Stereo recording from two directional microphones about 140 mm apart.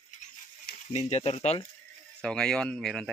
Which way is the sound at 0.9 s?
55° left (ahead or behind).